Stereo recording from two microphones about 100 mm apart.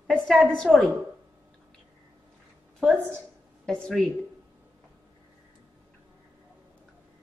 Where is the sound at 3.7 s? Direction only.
5° left (ahead or behind).